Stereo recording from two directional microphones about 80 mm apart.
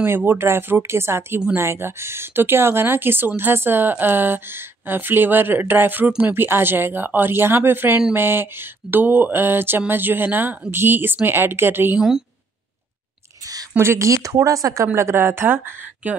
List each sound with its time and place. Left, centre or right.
0.0 s a woman's voice: right
13.7 s speech: right
15.0 s a woman's voice: right